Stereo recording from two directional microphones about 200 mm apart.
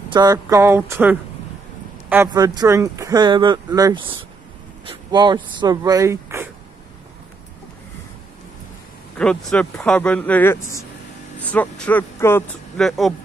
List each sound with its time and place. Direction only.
0.1 s speech: 20° right (ahead or behind)
2.2 s speech: 20° right (ahead or behind)
9.2 s speech: 5° left (ahead or behind)
12.7 s speech: centre (ahead or behind)